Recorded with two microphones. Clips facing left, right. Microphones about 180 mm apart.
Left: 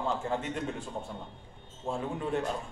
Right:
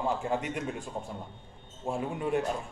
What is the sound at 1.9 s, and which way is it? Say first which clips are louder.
Speech: right 2 dB; 15° right (ahead or behind).